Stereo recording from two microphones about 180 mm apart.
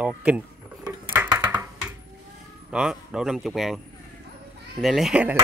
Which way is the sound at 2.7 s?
5° right (ahead or behind).